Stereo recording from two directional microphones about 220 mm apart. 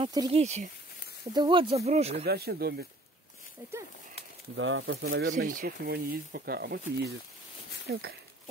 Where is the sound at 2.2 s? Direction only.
45° right (ahead or behind).